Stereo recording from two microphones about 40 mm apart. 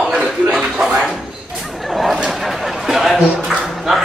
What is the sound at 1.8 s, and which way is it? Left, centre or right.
A man's voice, centre.